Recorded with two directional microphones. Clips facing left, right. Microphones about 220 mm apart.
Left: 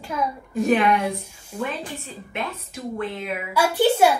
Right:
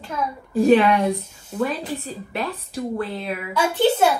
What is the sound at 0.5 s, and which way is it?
Speech, 30° right (ahead or behind).